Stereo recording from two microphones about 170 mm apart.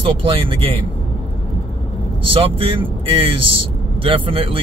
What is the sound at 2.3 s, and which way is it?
Speech, 30° right (ahead or behind).